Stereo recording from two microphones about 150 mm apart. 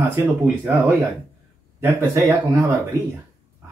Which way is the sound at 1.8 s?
20° right (ahead or behind).